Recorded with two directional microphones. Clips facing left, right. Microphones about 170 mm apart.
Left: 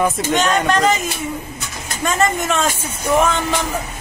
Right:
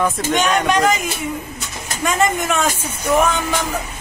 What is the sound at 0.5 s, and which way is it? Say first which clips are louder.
Speech: right 1 dB; 5° right (ahead or behind).